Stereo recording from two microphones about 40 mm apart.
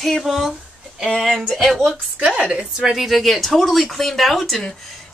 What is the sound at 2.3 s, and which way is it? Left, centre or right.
Speech, centre.